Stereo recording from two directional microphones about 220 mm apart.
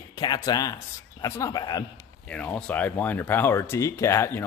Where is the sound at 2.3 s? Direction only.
5° left (ahead or behind).